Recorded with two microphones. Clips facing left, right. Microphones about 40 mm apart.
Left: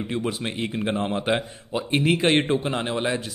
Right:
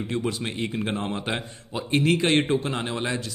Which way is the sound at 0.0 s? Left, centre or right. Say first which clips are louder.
Left 1 dB; centre.